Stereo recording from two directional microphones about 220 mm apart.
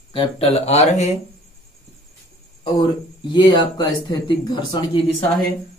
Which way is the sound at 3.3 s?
20° left (ahead or behind).